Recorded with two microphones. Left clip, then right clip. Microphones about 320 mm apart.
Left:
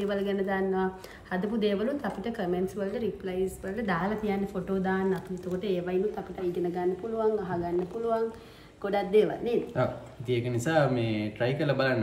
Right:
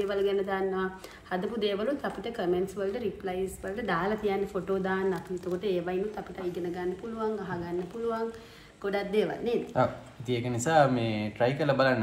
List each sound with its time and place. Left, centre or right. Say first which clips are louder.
0.1 s a woman's voice: right 1 dB; centre
6.7 s a woman's voice: left 4 dB; centre
9.8 s a woman's voice: right 2 dB; centre